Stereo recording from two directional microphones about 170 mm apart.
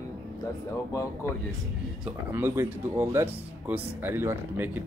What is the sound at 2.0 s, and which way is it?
Speech, 15° right (ahead or behind).